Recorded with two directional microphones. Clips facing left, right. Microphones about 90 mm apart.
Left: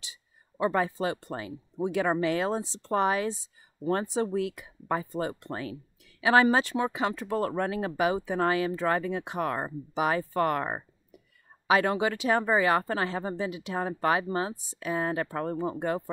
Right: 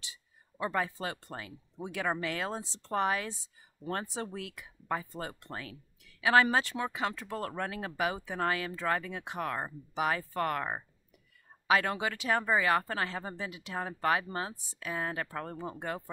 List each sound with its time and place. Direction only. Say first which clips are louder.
0.0 s speech: left 1 dB; 20° left (ahead or behind)